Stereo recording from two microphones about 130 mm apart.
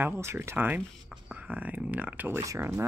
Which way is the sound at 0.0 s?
20° right (ahead or behind).